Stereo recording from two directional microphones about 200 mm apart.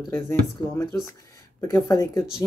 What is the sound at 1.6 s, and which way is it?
Speech, 15° left (ahead or behind).